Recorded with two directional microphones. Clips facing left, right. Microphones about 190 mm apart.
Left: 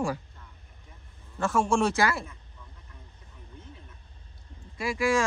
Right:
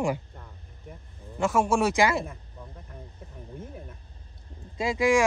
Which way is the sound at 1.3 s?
10° right (ahead or behind).